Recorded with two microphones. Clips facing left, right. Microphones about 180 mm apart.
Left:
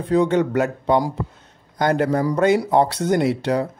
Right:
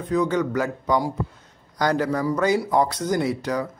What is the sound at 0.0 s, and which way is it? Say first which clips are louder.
Speech: left 4 dB; 30° left (ahead or behind).